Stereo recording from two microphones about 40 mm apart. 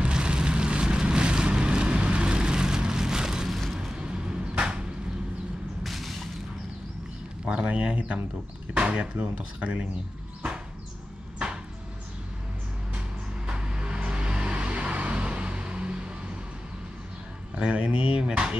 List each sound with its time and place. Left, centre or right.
0.0 s vehicle: right
3.7 s a sound: centre
4.0 s a sound: right
5.9 s boom: centre
7.4 s speech: right
13.5 s vehicle: right
17.9 s speech: right